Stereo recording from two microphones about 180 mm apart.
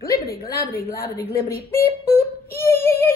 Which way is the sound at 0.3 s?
60° left (ahead or behind).